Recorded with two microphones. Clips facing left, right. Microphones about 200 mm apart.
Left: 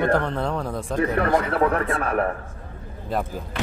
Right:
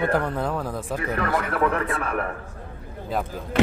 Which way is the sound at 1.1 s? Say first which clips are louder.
Left 3 dB; 35° left (ahead or behind).